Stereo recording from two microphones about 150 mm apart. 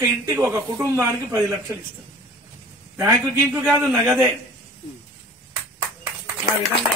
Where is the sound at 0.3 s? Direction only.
20° right (ahead or behind).